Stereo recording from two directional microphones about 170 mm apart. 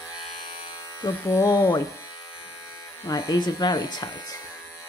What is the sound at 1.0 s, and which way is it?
Speech, 20° left (ahead or behind).